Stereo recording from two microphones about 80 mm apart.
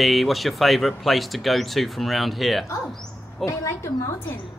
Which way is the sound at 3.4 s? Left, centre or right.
Left.